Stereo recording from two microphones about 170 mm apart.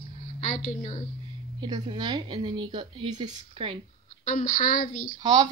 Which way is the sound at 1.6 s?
25° right (ahead or behind).